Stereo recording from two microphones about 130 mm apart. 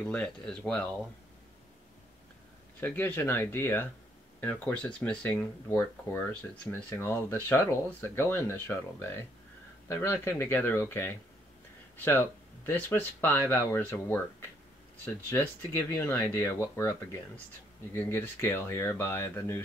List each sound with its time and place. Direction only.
0.0 s speech: 5° left (ahead or behind)
2.8 s speech: 15° left (ahead or behind)
15.9 s speech: 20° left (ahead or behind)